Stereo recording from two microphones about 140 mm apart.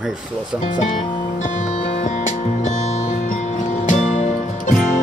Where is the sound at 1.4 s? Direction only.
60° left (ahead or behind).